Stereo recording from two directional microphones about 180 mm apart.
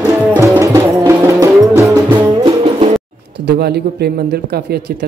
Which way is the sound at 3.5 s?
65° right (ahead or behind).